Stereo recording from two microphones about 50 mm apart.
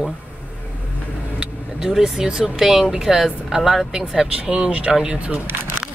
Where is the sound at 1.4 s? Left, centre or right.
Centre.